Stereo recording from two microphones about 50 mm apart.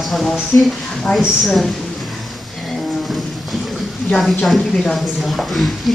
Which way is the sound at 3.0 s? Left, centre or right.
Centre.